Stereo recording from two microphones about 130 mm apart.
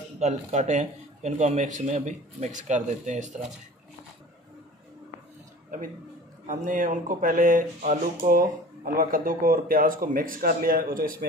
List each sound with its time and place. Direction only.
0.2 s a man's voice: 60° right (ahead or behind)
5.7 s speech: 90° right
8.9 s speech: 90° right